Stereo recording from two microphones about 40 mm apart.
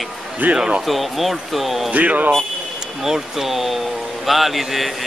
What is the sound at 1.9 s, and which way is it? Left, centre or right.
Speech, right.